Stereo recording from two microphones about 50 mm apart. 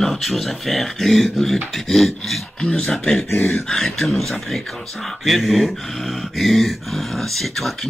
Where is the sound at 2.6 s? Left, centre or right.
Centre.